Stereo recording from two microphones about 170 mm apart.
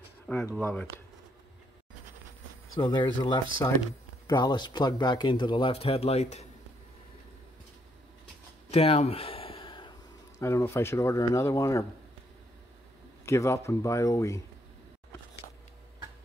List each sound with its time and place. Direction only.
0.6 s speech: 10° left (ahead or behind)
2.8 s speech: 25° left (ahead or behind); by 6.4 s 40° left (ahead or behind)
8.6 s a sound: 35° left (ahead or behind)
10.4 s speech: 15° left (ahead or behind)
13.2 s speech: 15° left (ahead or behind)